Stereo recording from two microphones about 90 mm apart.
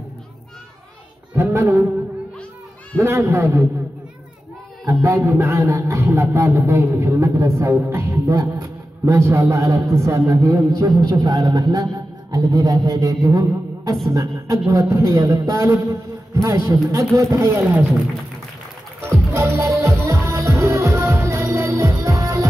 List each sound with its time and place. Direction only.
1.3 s speech: 30° right (ahead or behind)
3.0 s a man's voice: 30° right (ahead or behind)
4.8 s a man's voice: 35° right (ahead or behind)
19.3 s music: 30° right (ahead or behind)